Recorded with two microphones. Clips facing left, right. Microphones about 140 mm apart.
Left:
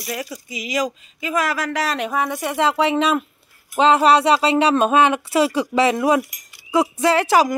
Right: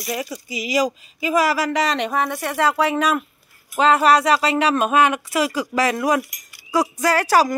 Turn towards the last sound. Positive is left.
turn(degrees=20)  # may be behind; listen again after turning